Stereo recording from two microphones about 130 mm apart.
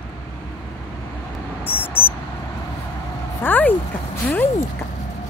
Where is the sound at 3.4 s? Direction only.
15° left (ahead or behind).